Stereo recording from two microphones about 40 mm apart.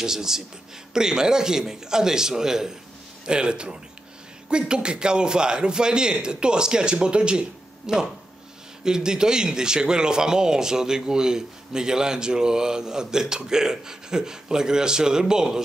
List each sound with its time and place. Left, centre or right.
0.0 s a man's voice: centre